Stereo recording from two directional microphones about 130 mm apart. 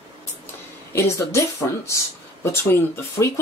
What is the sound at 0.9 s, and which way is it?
Speech, 20° left (ahead or behind).